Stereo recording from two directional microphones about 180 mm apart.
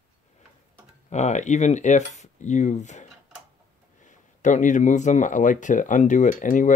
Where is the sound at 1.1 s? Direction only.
40° left (ahead or behind).